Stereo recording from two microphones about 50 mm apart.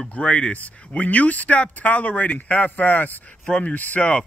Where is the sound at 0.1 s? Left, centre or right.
Left.